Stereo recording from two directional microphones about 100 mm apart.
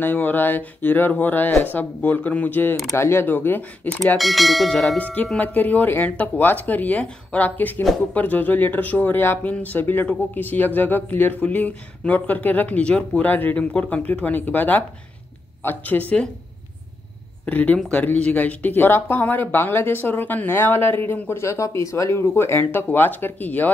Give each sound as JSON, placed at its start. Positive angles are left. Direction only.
{"t": 0.0, "sound": "speech", "side_deg": 20}
{"t": 4.2, "sound": "speech", "side_deg": 0}
{"t": 4.9, "sound": "speech", "side_deg": 15}
{"t": 17.5, "sound": "speech", "side_deg": 15}